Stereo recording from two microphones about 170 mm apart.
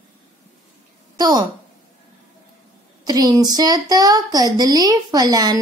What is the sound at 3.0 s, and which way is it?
A woman's voice, 25° right (ahead or behind).